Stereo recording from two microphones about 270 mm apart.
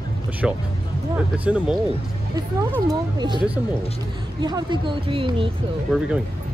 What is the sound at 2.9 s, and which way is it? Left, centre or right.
Speech, centre.